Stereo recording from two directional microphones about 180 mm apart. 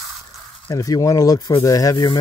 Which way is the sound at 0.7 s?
20° left (ahead or behind).